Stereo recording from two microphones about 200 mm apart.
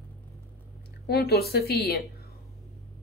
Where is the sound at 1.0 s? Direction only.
50° left (ahead or behind).